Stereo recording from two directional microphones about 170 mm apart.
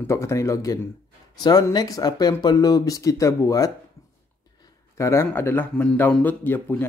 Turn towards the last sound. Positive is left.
turn(degrees=10)  # may be behind; listen again after turning